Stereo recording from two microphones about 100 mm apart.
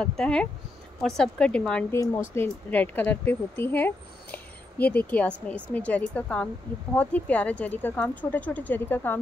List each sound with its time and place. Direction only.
0.0 s speech: 10° left (ahead or behind)
1.9 s speech: 30° left (ahead or behind)
2.4 s speech: 15° left (ahead or behind)